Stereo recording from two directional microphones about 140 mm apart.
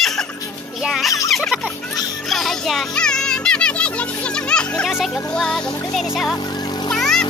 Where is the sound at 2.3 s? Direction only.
5° left (ahead or behind).